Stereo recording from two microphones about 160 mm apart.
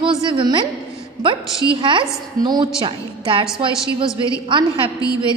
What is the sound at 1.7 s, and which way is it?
A woman's voice, 30° right (ahead or behind).